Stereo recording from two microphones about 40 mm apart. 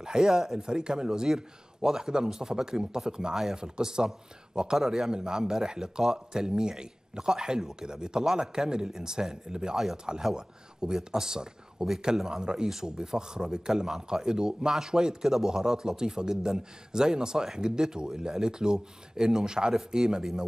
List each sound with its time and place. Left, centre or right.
0.0 s speech: centre
5.1 s speech: centre